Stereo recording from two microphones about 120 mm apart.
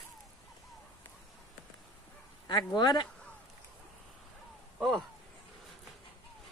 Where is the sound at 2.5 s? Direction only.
40° left (ahead or behind).